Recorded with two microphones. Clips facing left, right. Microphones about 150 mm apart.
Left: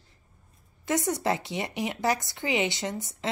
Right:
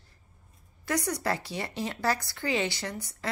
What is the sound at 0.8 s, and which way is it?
A woman's voice, 25° left (ahead or behind).